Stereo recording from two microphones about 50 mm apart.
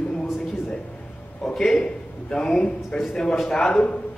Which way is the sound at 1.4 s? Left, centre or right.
Centre.